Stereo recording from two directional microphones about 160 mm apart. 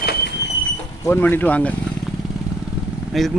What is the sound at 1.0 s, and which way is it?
Speech, 15° left (ahead or behind).